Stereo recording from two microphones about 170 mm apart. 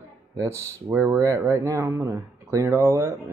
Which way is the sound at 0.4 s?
15° right (ahead or behind).